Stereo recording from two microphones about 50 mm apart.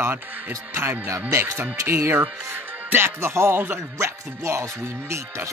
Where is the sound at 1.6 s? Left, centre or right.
Right.